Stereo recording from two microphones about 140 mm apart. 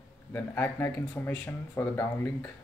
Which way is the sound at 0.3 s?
15° left (ahead or behind).